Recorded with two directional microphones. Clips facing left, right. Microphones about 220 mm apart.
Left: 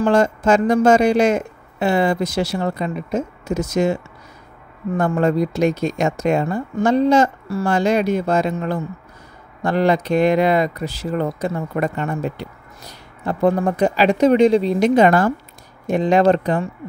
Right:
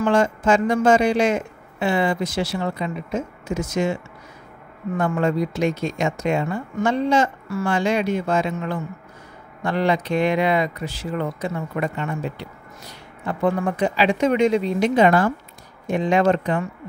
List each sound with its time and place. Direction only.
0.0 s speech: 40° left (ahead or behind)